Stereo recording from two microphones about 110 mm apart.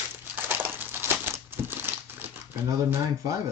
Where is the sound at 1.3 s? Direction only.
20° right (ahead or behind).